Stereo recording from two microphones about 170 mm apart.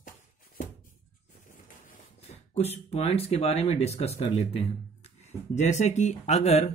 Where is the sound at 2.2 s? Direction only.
40° left (ahead or behind).